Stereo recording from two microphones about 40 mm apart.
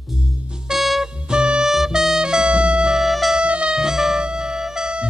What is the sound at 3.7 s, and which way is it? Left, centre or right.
Music, centre.